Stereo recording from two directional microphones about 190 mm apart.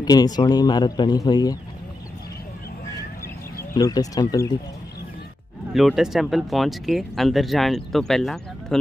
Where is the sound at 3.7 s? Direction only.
20° left (ahead or behind).